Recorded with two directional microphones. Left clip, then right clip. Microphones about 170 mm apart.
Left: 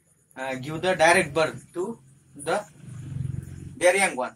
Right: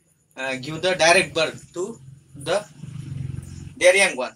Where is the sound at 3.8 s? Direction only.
15° left (ahead or behind).